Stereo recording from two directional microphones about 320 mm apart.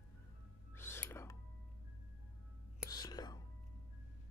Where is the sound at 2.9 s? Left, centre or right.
Centre.